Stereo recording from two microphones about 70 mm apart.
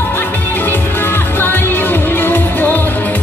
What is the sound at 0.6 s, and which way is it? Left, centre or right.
Music, left.